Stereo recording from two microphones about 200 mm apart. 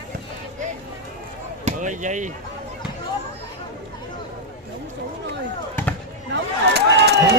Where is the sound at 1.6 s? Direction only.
40° right (ahead or behind).